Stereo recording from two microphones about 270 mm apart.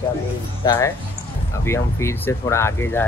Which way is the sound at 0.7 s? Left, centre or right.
Centre.